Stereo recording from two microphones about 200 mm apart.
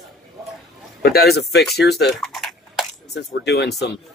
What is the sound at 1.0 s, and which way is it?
Speech, 50° left (ahead or behind).